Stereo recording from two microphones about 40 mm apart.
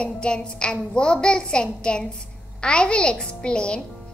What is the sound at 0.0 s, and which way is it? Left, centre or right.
A woman's voice, left.